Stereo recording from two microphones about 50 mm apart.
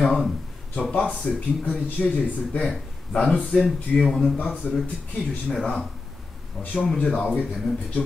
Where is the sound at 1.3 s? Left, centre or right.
Centre.